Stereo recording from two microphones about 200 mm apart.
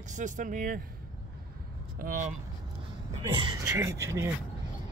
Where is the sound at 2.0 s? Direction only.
40° right (ahead or behind).